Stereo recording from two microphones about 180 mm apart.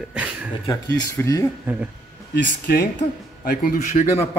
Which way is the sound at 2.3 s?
65° left (ahead or behind).